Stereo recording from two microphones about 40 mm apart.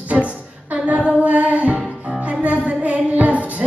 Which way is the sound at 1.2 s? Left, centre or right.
Right.